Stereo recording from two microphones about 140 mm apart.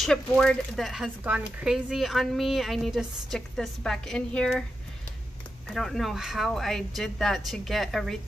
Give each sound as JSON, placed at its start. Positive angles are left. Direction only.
{"t": 0.0, "sound": "speech", "side_deg": 5}
{"t": 5.7, "sound": "speech", "side_deg": 0}